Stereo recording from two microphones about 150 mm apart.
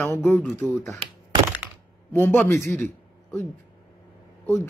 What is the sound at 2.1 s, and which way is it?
Speech, 15° left (ahead or behind).